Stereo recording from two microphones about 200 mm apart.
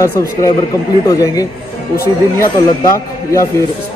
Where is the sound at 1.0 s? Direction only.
15° left (ahead or behind).